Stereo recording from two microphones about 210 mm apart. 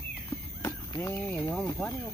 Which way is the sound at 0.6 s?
15° left (ahead or behind).